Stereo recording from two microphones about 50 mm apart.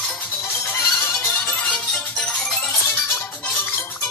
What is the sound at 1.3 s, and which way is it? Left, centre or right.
Music, centre.